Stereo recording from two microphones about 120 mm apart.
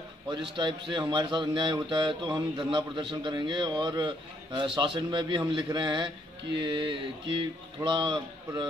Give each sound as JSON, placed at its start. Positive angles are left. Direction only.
{"t": 0.3, "sound": "speech", "side_deg": -40}